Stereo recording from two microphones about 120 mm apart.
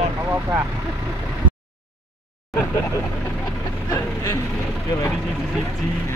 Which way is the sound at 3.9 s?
30° left (ahead or behind).